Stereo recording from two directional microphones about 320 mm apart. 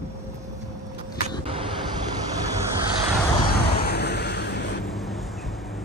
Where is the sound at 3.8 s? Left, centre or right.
Left.